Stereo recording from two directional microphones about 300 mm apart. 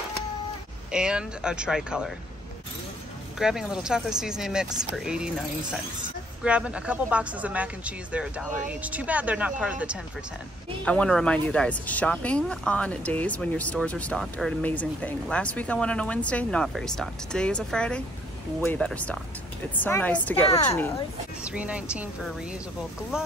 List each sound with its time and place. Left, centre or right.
0.9 s speech: centre
3.3 s speech: centre
6.4 s speech: centre
21.4 s speech: centre